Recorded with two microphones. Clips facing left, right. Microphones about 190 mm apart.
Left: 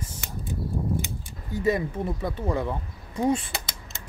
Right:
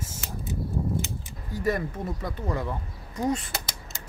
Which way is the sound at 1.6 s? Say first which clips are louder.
Left 3 dB; 20° left (ahead or behind).